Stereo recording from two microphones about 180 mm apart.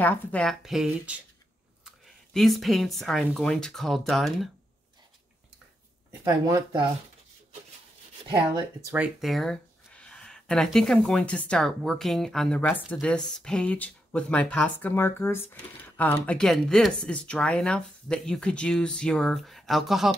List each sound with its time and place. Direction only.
0.0 s speech: 10° left (ahead or behind)
6.2 s speech: 20° right (ahead or behind)
8.8 s speech: 10° right (ahead or behind)